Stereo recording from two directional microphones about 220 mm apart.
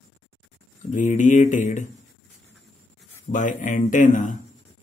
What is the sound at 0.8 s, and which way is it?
Speech, 35° left (ahead or behind).